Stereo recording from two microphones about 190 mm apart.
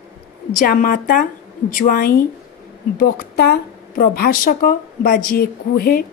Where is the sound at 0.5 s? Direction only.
45° left (ahead or behind).